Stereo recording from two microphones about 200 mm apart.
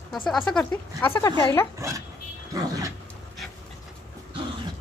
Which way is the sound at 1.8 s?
15° right (ahead or behind).